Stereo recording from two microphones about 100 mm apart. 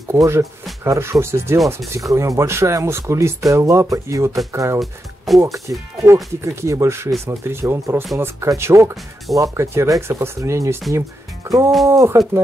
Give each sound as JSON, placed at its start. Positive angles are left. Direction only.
{"t": 0.2, "sound": "speech", "side_deg": -35}
{"t": 4.7, "sound": "speech", "side_deg": 0}
{"t": 5.4, "sound": "speech", "side_deg": -30}